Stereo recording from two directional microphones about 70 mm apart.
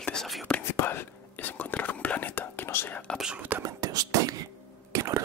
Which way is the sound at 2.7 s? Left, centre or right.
Left.